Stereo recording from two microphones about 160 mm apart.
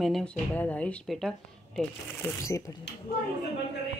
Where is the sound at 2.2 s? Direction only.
20° left (ahead or behind).